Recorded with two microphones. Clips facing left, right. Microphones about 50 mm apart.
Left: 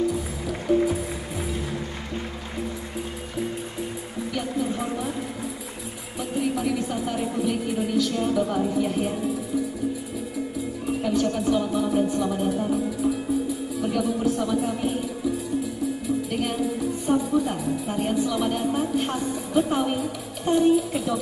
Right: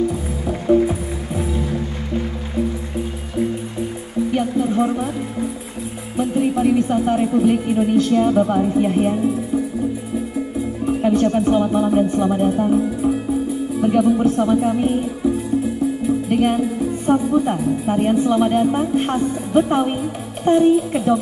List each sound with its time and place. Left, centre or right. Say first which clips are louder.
0.7 s music: right 6 dB; right
1.7 s music: right 7 dB; centre
4.3 s music: right 7 dB; right
6.1 s speech: right 8 dB; right
10.9 s a woman's voice: right 7 dB; right